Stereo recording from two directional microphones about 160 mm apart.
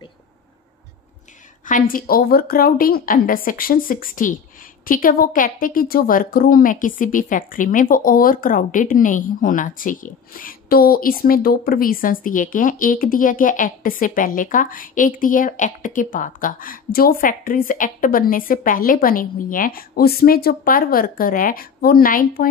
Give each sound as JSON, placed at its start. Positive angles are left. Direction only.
{"t": 1.7, "sound": "a woman's voice", "side_deg": 60}